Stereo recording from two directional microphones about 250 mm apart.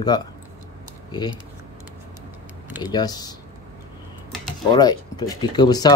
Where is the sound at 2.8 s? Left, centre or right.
Centre.